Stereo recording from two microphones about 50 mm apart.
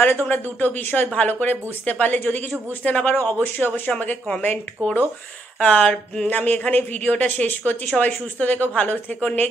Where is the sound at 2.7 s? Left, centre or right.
Left.